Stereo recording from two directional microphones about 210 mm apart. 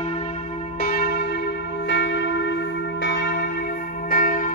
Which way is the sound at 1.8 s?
60° left (ahead or behind).